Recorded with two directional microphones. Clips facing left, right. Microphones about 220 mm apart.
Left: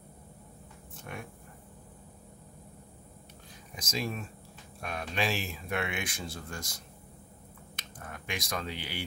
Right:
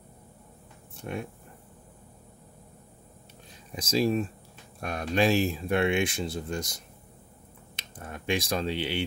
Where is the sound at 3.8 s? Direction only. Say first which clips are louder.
Right 10 dB; 30° right (ahead or behind).